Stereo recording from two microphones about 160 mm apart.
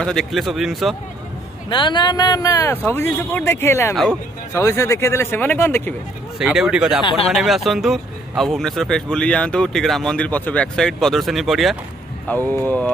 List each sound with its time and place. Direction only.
0.0 s speech: 5° left (ahead or behind)
1.7 s a man's voice: 30° left (ahead or behind)
3.9 s speech: centre (ahead or behind)
4.6 s a man's voice: 20° left (ahead or behind)
6.3 s speech: 5° right (ahead or behind)
7.0 s speech: 35° left (ahead or behind)
7.3 s speech: centre (ahead or behind)
12.3 s a man's voice: 10° left (ahead or behind)